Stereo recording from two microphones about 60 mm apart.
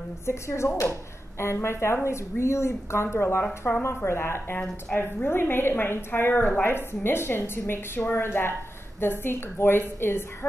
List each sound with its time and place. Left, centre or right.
0.3 s a woman's voice: left